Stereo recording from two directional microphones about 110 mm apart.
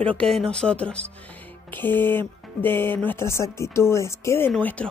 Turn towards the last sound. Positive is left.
turn(degrees=15)  # may be behind; listen again after turning